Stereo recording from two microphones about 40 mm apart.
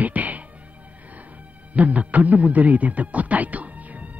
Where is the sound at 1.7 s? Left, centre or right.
Right.